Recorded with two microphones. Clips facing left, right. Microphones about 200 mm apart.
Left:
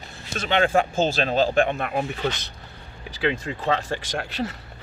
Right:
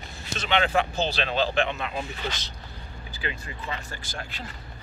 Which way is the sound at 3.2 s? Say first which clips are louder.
Left 11 dB; 90° left.